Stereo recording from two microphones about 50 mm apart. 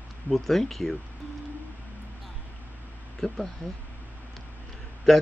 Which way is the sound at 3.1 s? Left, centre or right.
Centre.